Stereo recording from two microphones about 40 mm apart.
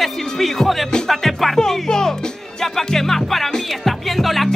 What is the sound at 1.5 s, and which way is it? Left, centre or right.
Speech, centre.